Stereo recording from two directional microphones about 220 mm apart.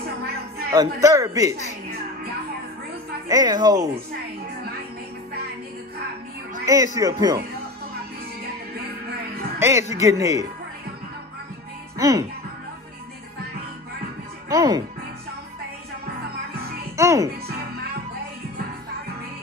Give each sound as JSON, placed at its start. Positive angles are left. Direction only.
{"t": 0.7, "sound": "speech", "side_deg": -15}
{"t": 3.3, "sound": "speech", "side_deg": -20}
{"t": 6.6, "sound": "speech", "side_deg": -15}
{"t": 9.6, "sound": "a man's voice", "side_deg": -15}
{"t": 12.0, "sound": "speech", "side_deg": -15}
{"t": 14.5, "sound": "speech", "side_deg": -15}
{"t": 16.9, "sound": "a child's voice", "side_deg": -15}